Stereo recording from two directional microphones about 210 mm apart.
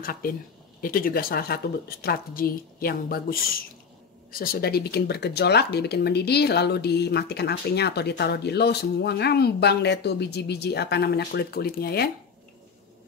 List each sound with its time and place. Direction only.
0.0 s speech: 45° left (ahead or behind)